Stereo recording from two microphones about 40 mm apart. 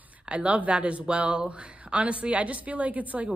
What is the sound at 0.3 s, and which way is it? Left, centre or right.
A woman's voice, right.